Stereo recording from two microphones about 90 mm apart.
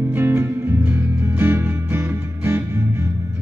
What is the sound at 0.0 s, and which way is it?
Music, 25° right (ahead or behind).